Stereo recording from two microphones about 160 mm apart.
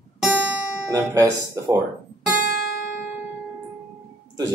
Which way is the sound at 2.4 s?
70° left (ahead or behind).